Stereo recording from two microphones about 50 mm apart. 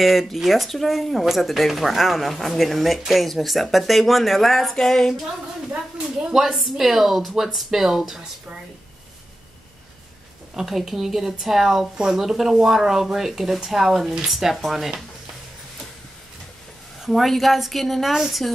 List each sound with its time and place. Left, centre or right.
0.0 s speech: centre
6.2 s speech: centre
10.5 s speech: centre
17.0 s speech: centre